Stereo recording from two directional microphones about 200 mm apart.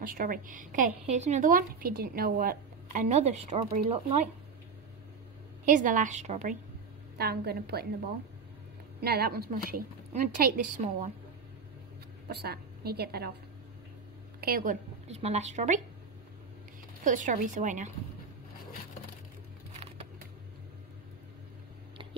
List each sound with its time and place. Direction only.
0.0 s a woman's voice: 45° right (ahead or behind)
5.7 s a woman's voice: 40° right (ahead or behind)
7.2 s a woman's voice: 50° right (ahead or behind)
9.0 s a woman's voice: 50° right (ahead or behind)
12.3 s a woman's voice: 55° right (ahead or behind)
14.4 s a woman's voice: 45° right (ahead or behind)
17.0 s a woman's voice: 40° right (ahead or behind)